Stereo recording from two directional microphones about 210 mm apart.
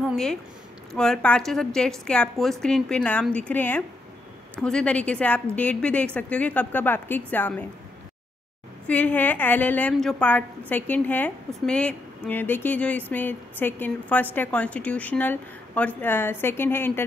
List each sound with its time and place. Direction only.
0.1 s a woman's voice: centre (ahead or behind)
8.8 s a woman's voice: 5° left (ahead or behind)